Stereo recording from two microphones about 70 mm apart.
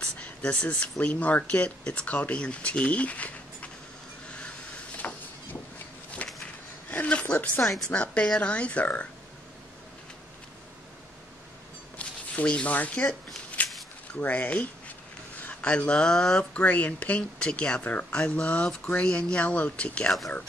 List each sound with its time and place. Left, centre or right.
0.0 s speech: centre
5.0 s a sound: left
6.2 s a sound: left
7.6 s a woman's voice: centre
7.9 s speech: centre
12.0 s speech: centre
14.1 s speech: left